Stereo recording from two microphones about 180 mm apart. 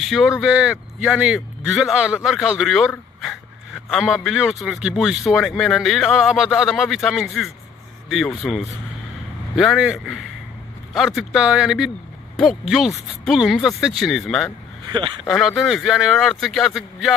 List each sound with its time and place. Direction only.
0.0 s speech: centre (ahead or behind)
14.9 s speech: 25° right (ahead or behind)
15.2 s speech: centre (ahead or behind)